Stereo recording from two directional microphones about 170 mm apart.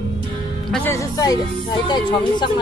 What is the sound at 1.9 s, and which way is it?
Speech, 25° left (ahead or behind).